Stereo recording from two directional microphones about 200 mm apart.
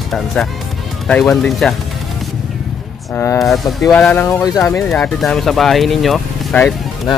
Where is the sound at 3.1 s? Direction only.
10° left (ahead or behind).